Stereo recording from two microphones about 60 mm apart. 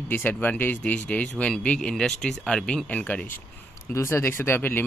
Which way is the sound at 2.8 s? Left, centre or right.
Left.